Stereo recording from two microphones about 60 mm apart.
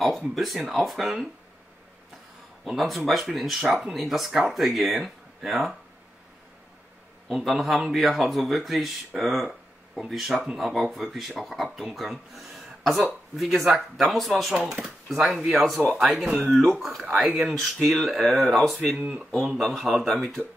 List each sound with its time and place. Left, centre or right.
0.0 s speech: centre
2.6 s speech: centre
7.2 s speech: centre
10.7 s speech: centre
18.9 s speech: centre
19.3 s speech: centre